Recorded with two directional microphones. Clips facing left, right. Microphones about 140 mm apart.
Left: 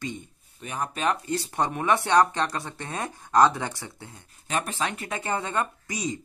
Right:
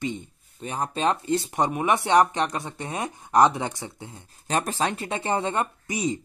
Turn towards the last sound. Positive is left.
turn(degrees=-25)  # may be behind; listen again after turning